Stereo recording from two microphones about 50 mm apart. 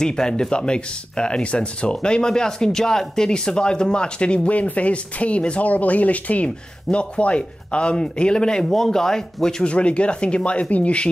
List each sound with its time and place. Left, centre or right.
0.0 s speech: centre
9.7 s speech: left